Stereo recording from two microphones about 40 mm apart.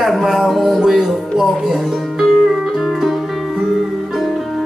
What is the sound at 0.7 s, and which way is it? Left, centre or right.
Speech, centre.